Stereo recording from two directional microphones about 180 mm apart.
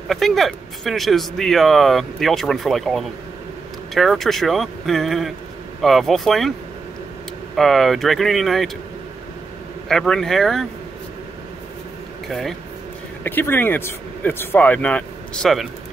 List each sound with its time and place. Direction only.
0.1 s speech: centre (ahead or behind)
7.5 s speech: centre (ahead or behind)
9.8 s speech: 5° left (ahead or behind)
12.3 s speech: centre (ahead or behind)